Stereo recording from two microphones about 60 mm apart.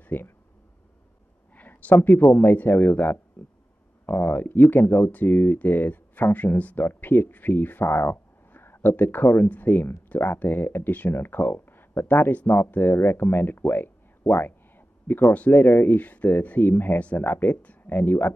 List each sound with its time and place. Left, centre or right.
0.0 s speech: left
1.5 s a sound: left
2.0 s speech: left
17.9 s speech: left